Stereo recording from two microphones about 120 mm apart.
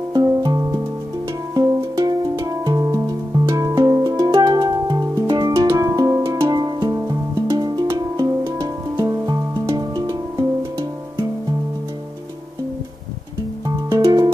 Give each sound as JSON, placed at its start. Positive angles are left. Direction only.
{"t": 0.1, "sound": "music", "side_deg": -30}
{"t": 6.5, "sound": "music", "side_deg": -35}
{"t": 13.8, "sound": "music", "side_deg": -25}